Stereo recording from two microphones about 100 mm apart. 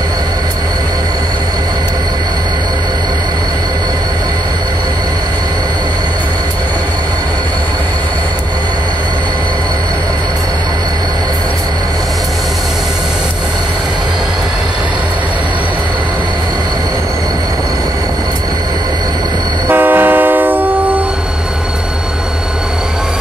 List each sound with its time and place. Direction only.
19.7 s vehicle: 20° right (ahead or behind)